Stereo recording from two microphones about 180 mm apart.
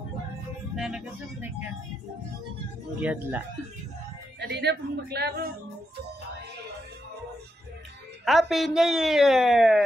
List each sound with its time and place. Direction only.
0.7 s a woman's voice: 5° right (ahead or behind)
3.0 s speech: 10° right (ahead or behind)
4.4 s a woman's voice: 70° right (ahead or behind)
8.3 s a woman's voice: centre (ahead or behind)